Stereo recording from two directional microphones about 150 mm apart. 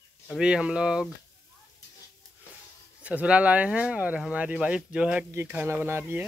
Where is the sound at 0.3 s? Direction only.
5° right (ahead or behind).